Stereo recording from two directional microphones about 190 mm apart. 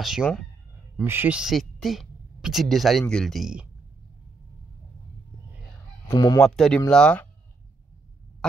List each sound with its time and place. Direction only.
0.0 s speech: centre (ahead or behind)
0.9 s speech: 10° right (ahead or behind)
6.0 s fowl: 20° left (ahead or behind)
6.4 s speech: 5° left (ahead or behind)